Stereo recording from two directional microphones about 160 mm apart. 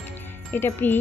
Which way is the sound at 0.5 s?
10° left (ahead or behind).